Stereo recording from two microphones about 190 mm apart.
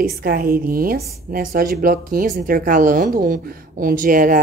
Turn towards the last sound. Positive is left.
turn(degrees=-45)  # may be behind; listen again after turning